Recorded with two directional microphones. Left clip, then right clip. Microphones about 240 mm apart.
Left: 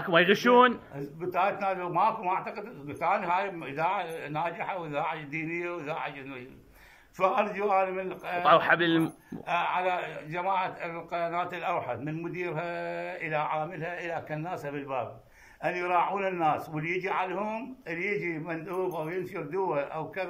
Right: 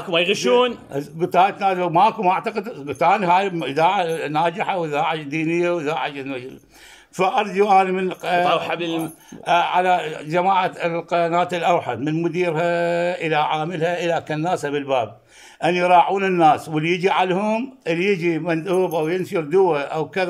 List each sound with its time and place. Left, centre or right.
0.0 s a man's voice: centre
0.9 s a man's voice: right
8.5 s a man's voice: centre
9.5 s a man's voice: right